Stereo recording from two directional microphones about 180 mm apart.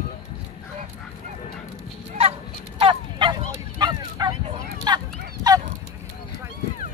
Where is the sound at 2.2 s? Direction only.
30° right (ahead or behind).